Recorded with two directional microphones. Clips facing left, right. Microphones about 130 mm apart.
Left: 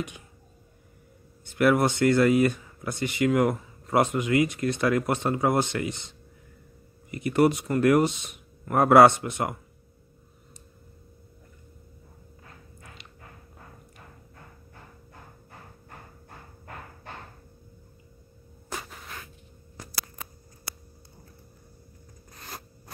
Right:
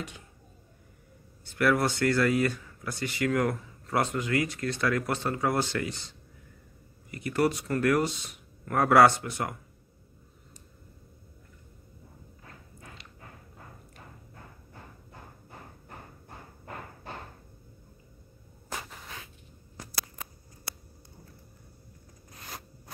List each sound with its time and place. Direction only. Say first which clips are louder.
1.5 s speech: left 4 dB; 20° left (ahead or behind)
13.0 s dog: left 1 dB; 20° left (ahead or behind)